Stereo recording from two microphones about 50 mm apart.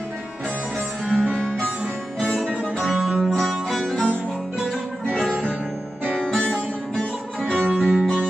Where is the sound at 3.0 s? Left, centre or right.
Centre.